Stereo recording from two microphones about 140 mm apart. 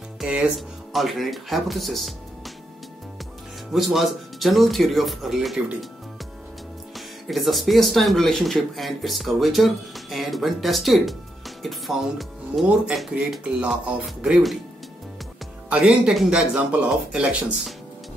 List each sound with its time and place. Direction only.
0.2 s speech: 10° right (ahead or behind)
3.7 s speech: centre (ahead or behind)
7.2 s speech: centre (ahead or behind)
15.7 s speech: 5° right (ahead or behind)